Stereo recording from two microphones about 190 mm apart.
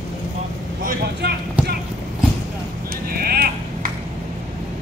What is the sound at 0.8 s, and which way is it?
Vehicle, 55° right (ahead or behind).